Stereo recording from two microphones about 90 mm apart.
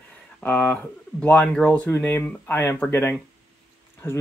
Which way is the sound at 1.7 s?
25° left (ahead or behind).